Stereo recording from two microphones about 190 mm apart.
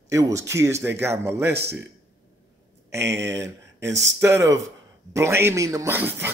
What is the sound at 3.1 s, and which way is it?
A man's voice, 15° right (ahead or behind).